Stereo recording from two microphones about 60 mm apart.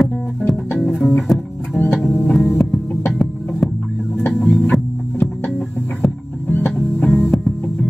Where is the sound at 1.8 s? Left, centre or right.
Left.